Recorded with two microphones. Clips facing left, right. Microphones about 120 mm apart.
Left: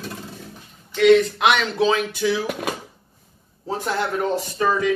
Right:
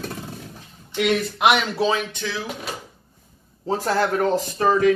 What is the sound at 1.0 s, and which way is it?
Speech, 5° right (ahead or behind).